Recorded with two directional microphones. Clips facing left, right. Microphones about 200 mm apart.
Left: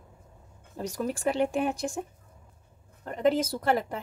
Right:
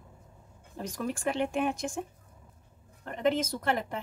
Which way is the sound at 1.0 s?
35° left (ahead or behind).